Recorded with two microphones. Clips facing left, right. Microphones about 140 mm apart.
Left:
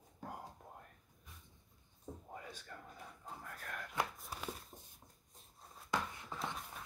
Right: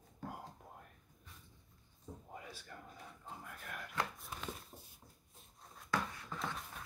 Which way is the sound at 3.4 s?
10° right (ahead or behind).